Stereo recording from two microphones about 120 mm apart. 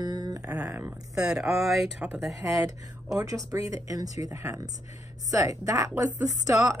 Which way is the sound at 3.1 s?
30° right (ahead or behind).